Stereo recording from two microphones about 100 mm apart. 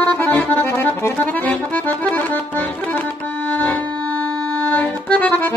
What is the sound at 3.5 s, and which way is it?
Accordion, 15° left (ahead or behind).